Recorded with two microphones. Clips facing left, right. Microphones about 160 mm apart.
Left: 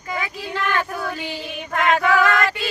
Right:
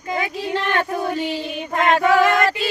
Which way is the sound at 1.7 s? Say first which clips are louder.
Right 2 dB; 30° right (ahead or behind).